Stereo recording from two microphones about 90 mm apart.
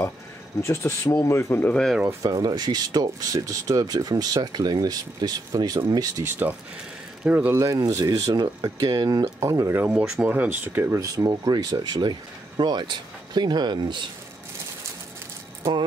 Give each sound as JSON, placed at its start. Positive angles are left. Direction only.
{"t": 0.6, "sound": "speech", "side_deg": 30}
{"t": 1.7, "sound": "speech", "side_deg": 5}
{"t": 2.2, "sound": "speech", "side_deg": -50}
{"t": 7.2, "sound": "speech", "side_deg": -20}
{"t": 7.5, "sound": "speech", "side_deg": -40}
{"t": 9.4, "sound": "speech", "side_deg": -30}
{"t": 9.9, "sound": "speech", "side_deg": -10}
{"t": 10.2, "sound": "speech", "side_deg": -20}
{"t": 11.0, "sound": "speech", "side_deg": -40}